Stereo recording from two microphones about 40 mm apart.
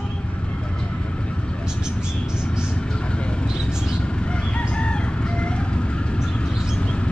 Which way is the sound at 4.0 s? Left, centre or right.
Left.